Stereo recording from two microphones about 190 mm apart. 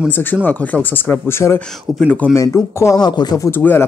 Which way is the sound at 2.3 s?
15° left (ahead or behind).